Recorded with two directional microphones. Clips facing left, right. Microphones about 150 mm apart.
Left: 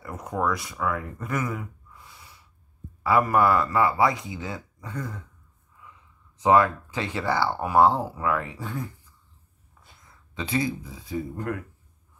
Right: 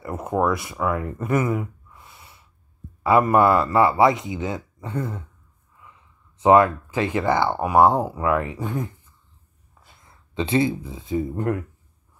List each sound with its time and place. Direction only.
0.0 s a sound: 25° right (ahead or behind)
0.7 s speech: 25° right (ahead or behind)
6.4 s speech: 20° right (ahead or behind)
10.0 s speech: 25° right (ahead or behind)